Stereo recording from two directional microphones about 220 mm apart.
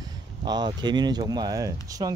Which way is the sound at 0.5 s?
20° right (ahead or behind).